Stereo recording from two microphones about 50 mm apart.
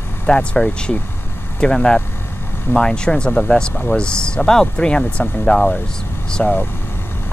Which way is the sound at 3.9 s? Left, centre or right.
Centre.